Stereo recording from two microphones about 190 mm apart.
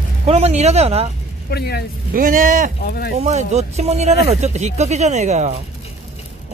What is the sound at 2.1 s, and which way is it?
Speech, 45° right (ahead or behind).